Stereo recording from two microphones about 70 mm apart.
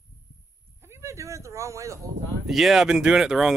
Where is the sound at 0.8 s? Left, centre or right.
Right.